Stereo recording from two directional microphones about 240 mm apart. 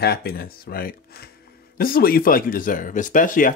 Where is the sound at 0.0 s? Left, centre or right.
Left.